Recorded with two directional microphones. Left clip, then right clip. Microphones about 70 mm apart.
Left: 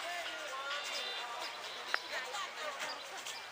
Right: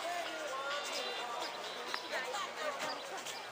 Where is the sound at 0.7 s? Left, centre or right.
Left.